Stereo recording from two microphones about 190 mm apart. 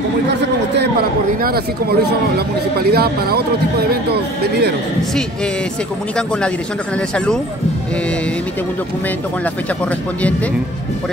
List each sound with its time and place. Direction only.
1.4 s speech: 55° right (ahead or behind)